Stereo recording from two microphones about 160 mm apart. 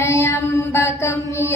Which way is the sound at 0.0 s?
20° left (ahead or behind).